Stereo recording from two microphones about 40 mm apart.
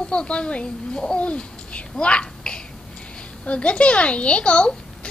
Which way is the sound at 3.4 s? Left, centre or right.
Left.